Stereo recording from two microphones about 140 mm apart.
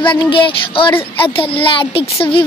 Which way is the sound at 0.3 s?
35° left (ahead or behind).